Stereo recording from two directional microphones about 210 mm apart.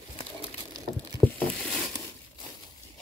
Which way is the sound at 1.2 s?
Centre (ahead or behind).